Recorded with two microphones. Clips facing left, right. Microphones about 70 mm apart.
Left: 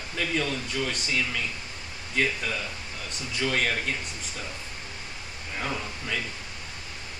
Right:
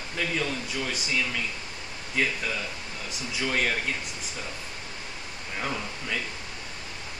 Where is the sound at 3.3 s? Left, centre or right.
Centre.